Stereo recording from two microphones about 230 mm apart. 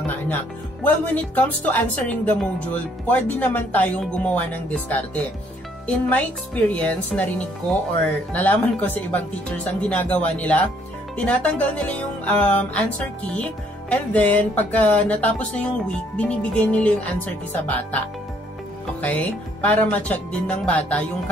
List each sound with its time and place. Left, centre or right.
0.8 s speech: centre
11.1 s music: centre
13.3 s speech: centre
18.9 s speech: centre